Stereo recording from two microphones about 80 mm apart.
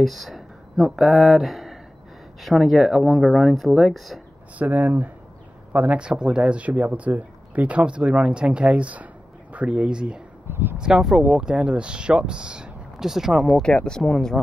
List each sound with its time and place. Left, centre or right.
0.0 s speech: centre
4.6 s speech: centre
10.5 s speech: right
10.8 s speech: centre
13.8 s speech: centre